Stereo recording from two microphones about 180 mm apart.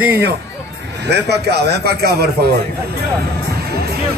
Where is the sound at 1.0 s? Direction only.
70° right (ahead or behind).